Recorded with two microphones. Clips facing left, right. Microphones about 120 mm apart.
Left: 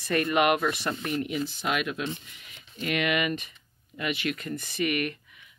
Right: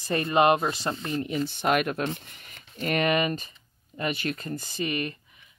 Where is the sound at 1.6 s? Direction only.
45° right (ahead or behind).